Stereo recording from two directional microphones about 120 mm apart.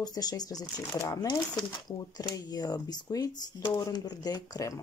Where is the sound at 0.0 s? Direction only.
35° left (ahead or behind).